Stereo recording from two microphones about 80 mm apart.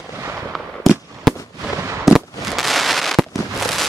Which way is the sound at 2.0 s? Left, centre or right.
Centre.